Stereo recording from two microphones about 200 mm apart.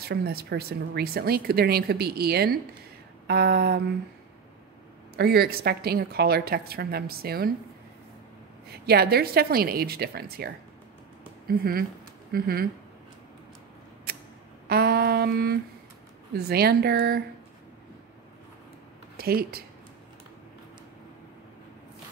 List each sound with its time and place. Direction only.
0.0 s speech: 50° right (ahead or behind)
5.1 s speech: 50° right (ahead or behind)
8.8 s speech: 50° right (ahead or behind)
14.7 s speech: 50° right (ahead or behind)
19.1 s speech: 50° right (ahead or behind)